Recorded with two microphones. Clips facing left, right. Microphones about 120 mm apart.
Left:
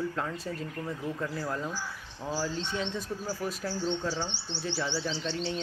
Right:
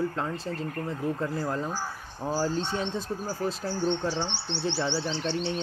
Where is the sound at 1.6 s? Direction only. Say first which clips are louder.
Right 4 dB; 45° right (ahead or behind).